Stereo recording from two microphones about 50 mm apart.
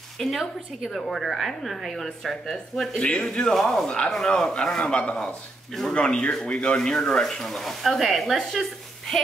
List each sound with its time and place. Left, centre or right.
0.2 s a man's voice: centre